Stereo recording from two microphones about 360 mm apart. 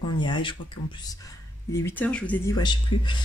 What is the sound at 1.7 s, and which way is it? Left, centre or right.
Speech, centre.